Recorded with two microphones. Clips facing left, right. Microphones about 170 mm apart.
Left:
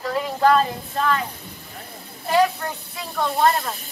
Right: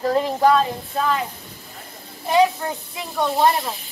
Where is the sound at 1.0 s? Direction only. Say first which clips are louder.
Even; 5° right (ahead or behind).